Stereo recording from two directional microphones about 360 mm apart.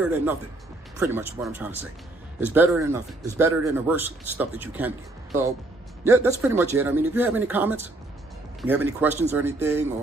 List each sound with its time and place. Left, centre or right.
0.0 s speech: centre
6.0 s speech: centre